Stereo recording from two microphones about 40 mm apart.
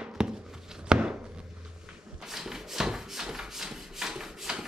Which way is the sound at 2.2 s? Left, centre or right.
Centre.